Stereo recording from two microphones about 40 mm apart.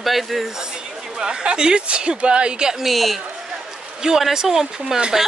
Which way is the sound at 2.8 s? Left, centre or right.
Centre.